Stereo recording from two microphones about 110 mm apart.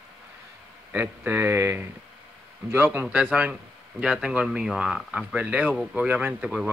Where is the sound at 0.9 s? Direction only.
20° right (ahead or behind).